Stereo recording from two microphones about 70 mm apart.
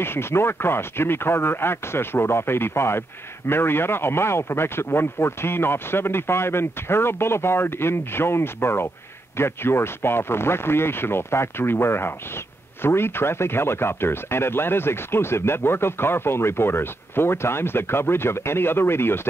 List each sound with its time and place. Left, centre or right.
0.0 s speech: left